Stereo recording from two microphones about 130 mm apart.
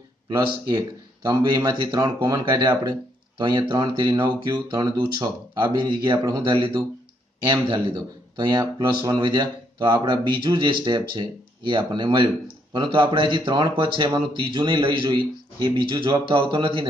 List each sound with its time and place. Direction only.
0.3 s speech: 30° right (ahead or behind)